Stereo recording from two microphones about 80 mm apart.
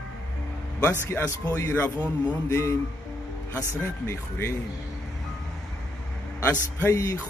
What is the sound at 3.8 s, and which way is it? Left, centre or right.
Speech, left.